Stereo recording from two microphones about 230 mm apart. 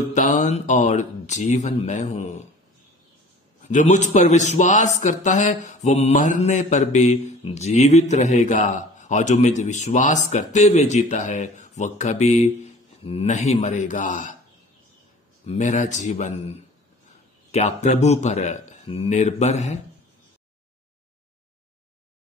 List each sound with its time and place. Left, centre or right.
0.1 s a man's voice: left
3.6 s a man's voice: left
15.4 s a man's voice: left